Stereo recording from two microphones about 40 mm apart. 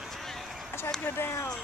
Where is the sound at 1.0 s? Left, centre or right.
Left.